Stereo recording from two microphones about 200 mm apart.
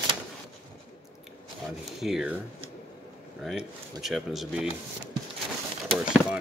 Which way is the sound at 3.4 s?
Centre (ahead or behind).